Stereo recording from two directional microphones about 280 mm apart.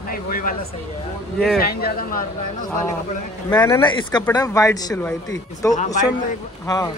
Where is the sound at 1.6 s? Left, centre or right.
Left.